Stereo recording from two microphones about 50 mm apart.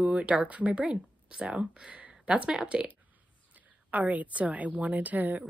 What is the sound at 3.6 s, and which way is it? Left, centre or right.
A woman's voice, right.